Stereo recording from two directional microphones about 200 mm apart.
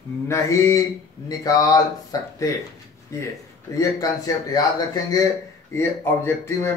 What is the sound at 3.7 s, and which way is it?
Speech, 15° left (ahead or behind).